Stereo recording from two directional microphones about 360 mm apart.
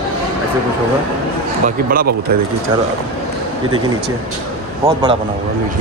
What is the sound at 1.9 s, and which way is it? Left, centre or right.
Speech, right.